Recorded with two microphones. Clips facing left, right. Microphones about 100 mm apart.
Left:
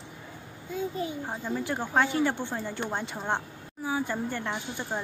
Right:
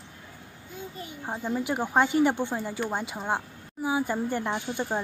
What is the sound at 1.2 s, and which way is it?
Speech, 10° right (ahead or behind).